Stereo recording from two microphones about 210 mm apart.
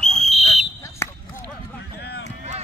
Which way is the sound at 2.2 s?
35° right (ahead or behind).